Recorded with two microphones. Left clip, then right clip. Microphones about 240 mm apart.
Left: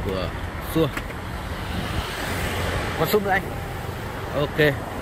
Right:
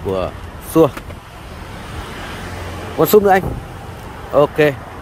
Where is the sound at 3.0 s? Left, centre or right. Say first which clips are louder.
Right 10 dB; right.